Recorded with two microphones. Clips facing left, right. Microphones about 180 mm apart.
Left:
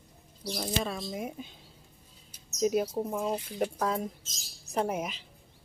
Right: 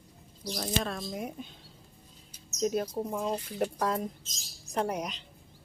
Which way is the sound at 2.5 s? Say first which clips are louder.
Left 2 dB; 5° left (ahead or behind).